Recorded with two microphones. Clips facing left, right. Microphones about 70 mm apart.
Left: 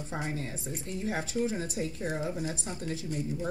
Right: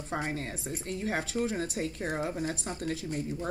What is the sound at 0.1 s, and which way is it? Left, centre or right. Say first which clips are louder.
Speech: right 3 dB; right.